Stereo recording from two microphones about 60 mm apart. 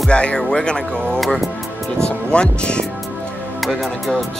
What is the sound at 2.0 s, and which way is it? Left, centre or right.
Speech, centre.